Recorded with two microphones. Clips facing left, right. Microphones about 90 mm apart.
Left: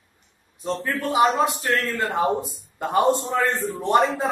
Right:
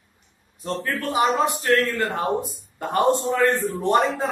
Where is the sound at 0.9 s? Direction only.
15° left (ahead or behind).